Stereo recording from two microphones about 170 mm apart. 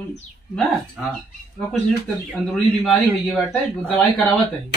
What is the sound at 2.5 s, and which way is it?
A man's voice, 5° left (ahead or behind).